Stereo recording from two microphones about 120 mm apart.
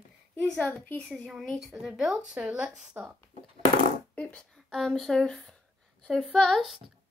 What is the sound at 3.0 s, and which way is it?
Speech, 20° right (ahead or behind).